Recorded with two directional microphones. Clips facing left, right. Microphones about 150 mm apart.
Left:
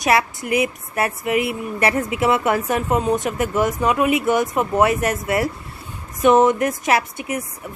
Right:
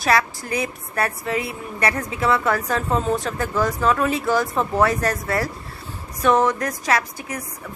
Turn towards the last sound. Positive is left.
turn(degrees=25)  # may be behind; listen again after turning